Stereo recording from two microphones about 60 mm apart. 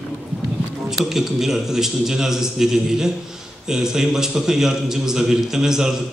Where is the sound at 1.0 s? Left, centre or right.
Centre.